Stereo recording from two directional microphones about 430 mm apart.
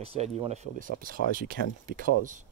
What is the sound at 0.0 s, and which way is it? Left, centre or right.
Speech, centre.